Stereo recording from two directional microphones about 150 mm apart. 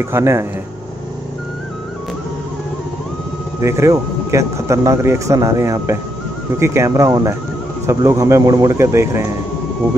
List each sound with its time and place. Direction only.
0.0 s speech: 20° right (ahead or behind)
3.6 s speech: 20° right (ahead or behind)